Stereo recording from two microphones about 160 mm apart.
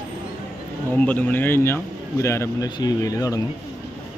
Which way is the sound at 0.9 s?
10° left (ahead or behind).